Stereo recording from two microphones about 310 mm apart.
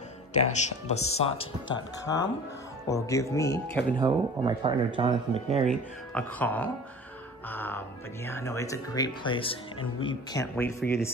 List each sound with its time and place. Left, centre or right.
0.3 s speech: left
4.0 s speech: centre
5.7 s speech: centre